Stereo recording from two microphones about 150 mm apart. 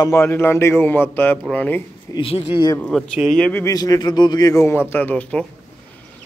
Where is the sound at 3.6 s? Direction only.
25° left (ahead or behind); by 5.5 s 10° left (ahead or behind).